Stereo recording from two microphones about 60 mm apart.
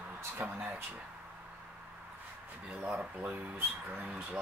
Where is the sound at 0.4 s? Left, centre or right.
Right.